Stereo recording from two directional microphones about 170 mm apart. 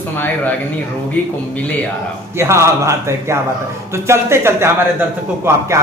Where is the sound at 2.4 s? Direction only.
15° right (ahead or behind).